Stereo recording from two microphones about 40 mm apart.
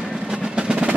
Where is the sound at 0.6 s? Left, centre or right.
Right.